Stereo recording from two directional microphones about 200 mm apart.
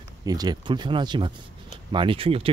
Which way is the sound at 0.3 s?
20° right (ahead or behind).